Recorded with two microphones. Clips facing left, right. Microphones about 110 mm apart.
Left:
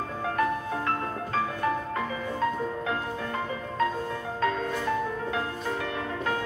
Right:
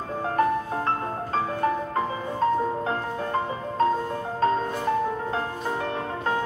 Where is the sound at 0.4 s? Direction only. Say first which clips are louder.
Right 4 dB; 35° right (ahead or behind).